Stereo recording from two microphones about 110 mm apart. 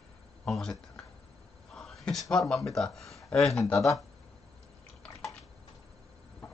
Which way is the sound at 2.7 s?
5° left (ahead or behind).